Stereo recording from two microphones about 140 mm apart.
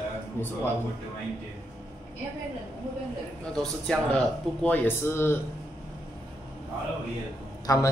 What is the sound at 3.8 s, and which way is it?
Speech, 10° left (ahead or behind).